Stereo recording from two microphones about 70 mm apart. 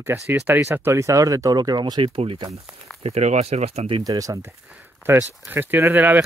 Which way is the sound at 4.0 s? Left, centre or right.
Right.